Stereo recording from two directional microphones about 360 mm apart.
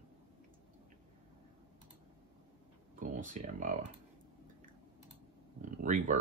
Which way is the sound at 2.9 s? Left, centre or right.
Right.